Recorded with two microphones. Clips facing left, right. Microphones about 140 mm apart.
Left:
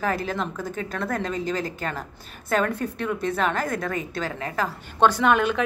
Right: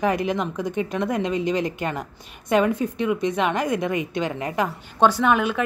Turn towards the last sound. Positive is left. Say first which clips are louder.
# even
turn(degrees=-10)  # may be behind; listen again after turning